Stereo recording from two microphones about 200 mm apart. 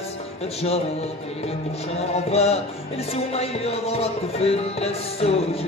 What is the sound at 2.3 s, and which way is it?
Music, 30° left (ahead or behind).